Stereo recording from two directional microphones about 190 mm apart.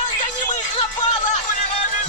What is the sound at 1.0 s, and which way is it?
Music, 40° left (ahead or behind).